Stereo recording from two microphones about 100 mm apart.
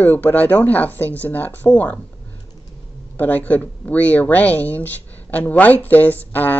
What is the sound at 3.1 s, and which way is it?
Speech, 15° left (ahead or behind).